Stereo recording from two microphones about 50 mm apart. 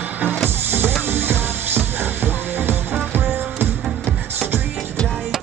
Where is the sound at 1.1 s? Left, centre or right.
Right.